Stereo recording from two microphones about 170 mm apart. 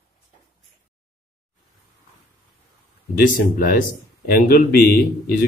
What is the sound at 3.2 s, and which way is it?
Speech, 55° left (ahead or behind).